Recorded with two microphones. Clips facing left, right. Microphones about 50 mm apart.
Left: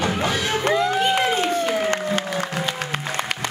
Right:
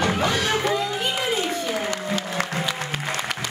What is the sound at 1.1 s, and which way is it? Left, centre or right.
Music, left.